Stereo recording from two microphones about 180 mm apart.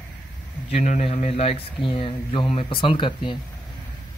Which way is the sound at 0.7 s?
40° left (ahead or behind).